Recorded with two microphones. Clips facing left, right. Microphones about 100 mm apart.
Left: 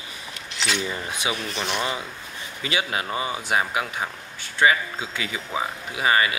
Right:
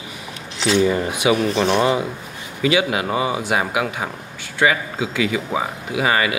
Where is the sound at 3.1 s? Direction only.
25° right (ahead or behind).